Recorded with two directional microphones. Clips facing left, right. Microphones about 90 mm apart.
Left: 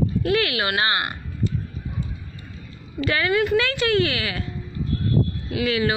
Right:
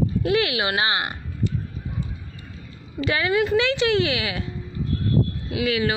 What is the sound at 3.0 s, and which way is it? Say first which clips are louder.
Speech: even; 20° right (ahead or behind).